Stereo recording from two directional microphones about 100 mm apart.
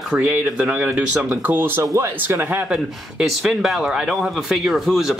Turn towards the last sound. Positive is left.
turn(degrees=-5)  # may be behind; listen again after turning